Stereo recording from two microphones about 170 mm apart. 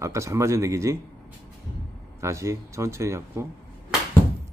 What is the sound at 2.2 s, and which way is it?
Speech, 15° right (ahead or behind).